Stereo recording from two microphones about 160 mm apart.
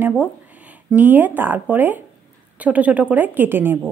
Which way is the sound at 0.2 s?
10° right (ahead or behind).